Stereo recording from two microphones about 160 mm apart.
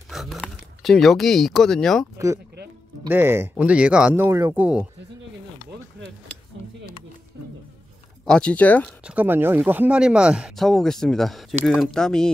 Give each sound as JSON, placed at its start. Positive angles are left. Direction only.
{"t": 0.1, "sound": "speech", "side_deg": 0}
{"t": 2.1, "sound": "speech", "side_deg": -20}
{"t": 8.3, "sound": "speech", "side_deg": 5}
{"t": 9.0, "sound": "speech", "side_deg": -10}